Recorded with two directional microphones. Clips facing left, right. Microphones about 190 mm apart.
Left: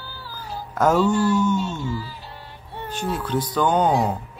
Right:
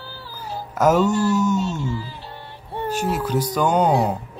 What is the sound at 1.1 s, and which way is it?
Speech, 10° right (ahead or behind).